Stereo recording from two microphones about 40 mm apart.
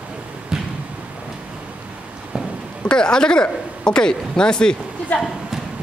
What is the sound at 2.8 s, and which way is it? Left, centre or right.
Speech, left.